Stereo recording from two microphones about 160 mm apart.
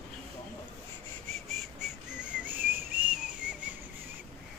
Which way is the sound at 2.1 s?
5° right (ahead or behind).